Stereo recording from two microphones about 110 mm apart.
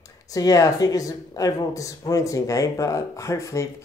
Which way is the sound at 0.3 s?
35° left (ahead or behind).